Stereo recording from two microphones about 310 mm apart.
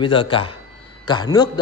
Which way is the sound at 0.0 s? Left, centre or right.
Centre.